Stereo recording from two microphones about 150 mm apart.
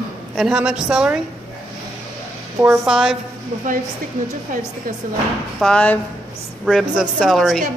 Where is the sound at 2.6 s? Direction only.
5° right (ahead or behind).